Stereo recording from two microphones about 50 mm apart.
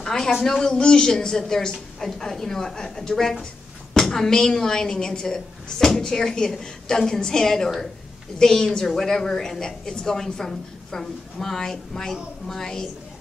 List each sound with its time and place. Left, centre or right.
0.0 s a woman's voice: centre